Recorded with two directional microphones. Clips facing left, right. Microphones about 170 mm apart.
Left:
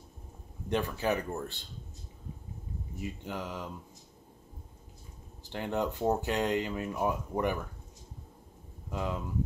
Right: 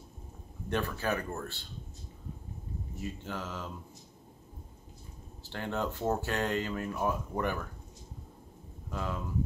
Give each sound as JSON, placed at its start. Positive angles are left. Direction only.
{"t": 0.7, "sound": "speech", "side_deg": 15}
{"t": 3.0, "sound": "speech", "side_deg": 15}
{"t": 5.5, "sound": "speech", "side_deg": 15}
{"t": 8.9, "sound": "speech", "side_deg": 20}